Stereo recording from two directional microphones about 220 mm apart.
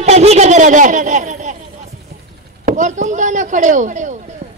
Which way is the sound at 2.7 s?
35° right (ahead or behind).